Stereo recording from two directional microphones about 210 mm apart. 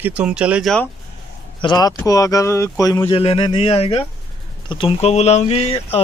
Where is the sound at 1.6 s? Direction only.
20° left (ahead or behind).